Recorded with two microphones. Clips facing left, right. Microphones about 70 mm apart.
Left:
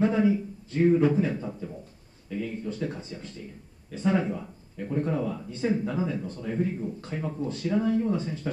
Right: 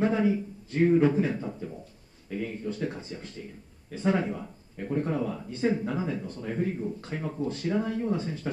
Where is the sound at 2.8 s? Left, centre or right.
Right.